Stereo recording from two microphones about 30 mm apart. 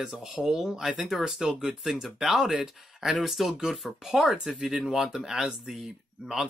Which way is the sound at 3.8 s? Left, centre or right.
Centre.